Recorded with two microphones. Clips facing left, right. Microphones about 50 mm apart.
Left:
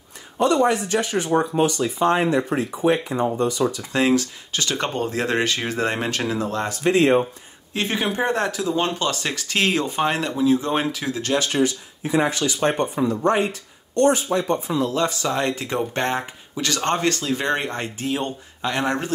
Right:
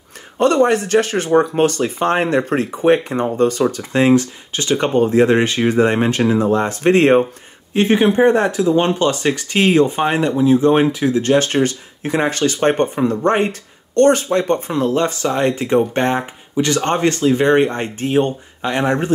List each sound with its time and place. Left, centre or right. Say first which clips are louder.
0.4 s speech: right 5 dB; right
3.9 s speech: right 7 dB; right
6.9 s speech: right 5 dB; right
7.7 s speech: right 10 dB; right
11.3 s speech: right 5 dB; right
15.2 s speech: right 6 dB; right